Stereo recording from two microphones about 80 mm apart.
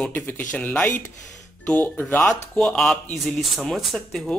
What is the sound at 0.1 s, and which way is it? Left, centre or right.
Speech, left.